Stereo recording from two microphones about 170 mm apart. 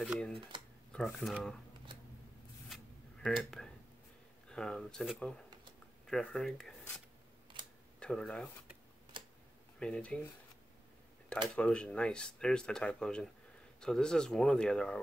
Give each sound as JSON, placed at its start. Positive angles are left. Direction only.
{"t": 0.0, "sound": "speech", "side_deg": 0}
{"t": 2.7, "sound": "a sound", "side_deg": 0}
{"t": 4.5, "sound": "speech", "side_deg": 5}
{"t": 7.5, "sound": "camera", "side_deg": -30}
{"t": 8.0, "sound": "speech", "side_deg": 5}
{"t": 9.8, "sound": "speech", "side_deg": 5}
{"t": 11.4, "sound": "speech", "side_deg": 5}